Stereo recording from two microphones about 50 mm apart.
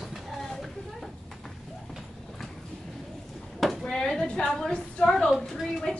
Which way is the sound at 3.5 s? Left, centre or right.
Centre.